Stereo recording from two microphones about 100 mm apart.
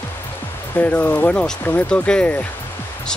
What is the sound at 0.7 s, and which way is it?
Speech, 15° left (ahead or behind).